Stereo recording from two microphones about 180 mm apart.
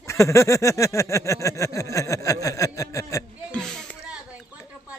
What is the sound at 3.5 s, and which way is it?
Music, 5° left (ahead or behind).